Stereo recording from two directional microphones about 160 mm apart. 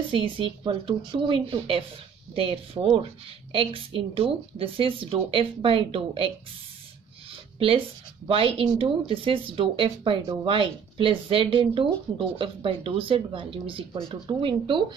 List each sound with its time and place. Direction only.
0.1 s speech: 30° right (ahead or behind)
7.5 s speech: 35° right (ahead or behind)